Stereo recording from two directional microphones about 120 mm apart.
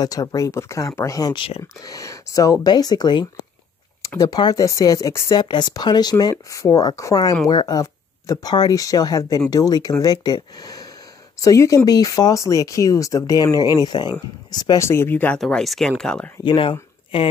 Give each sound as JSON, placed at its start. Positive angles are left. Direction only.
{"t": 0.0, "sound": "speech", "side_deg": 30}
{"t": 1.3, "sound": "speech", "side_deg": 50}
{"t": 1.8, "sound": "speech", "side_deg": 30}
{"t": 5.3, "sound": "speech", "side_deg": 40}
{"t": 14.9, "sound": "speech", "side_deg": 20}
{"t": 15.4, "sound": "speech", "side_deg": 0}
{"t": 16.4, "sound": "speech", "side_deg": 45}